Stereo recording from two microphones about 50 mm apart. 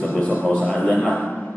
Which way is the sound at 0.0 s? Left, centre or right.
Left.